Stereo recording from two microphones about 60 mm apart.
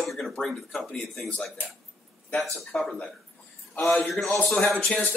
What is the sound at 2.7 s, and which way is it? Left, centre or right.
A man's voice, centre.